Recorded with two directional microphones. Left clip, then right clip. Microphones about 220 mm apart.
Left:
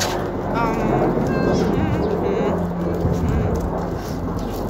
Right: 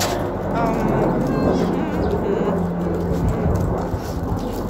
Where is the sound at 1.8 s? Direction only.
25° left (ahead or behind).